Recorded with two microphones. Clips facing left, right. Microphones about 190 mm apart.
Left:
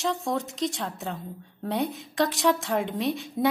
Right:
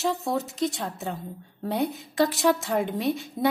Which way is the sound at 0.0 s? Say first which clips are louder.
Right 1 dB; 5° right (ahead or behind).